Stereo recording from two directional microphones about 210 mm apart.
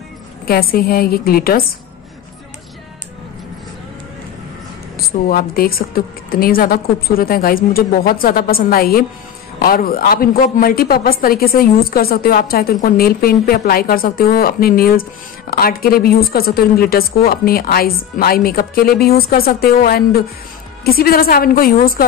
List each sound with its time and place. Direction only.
0.5 s a woman's voice: 45° left (ahead or behind)
4.9 s a woman's voice: 45° left (ahead or behind)